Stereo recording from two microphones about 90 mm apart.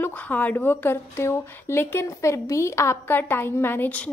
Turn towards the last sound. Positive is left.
turn(degrees=20)  # may be behind; listen again after turning